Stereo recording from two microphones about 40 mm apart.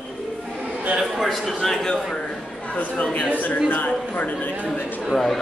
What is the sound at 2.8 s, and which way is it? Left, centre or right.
Speech, left.